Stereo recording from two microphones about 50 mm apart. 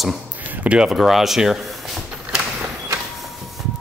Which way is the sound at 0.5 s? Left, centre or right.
Right.